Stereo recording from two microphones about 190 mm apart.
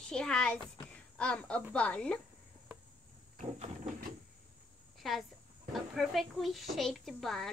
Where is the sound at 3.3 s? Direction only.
40° right (ahead or behind).